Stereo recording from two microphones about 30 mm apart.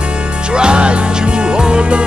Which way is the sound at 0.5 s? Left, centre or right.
Right.